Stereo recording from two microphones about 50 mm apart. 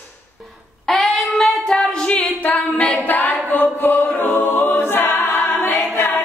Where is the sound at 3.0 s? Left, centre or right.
Left.